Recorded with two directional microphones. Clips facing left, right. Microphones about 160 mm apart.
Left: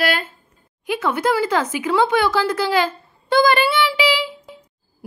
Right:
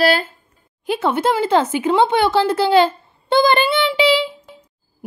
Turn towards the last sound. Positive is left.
turn(degrees=-30)  # may be behind; listen again after turning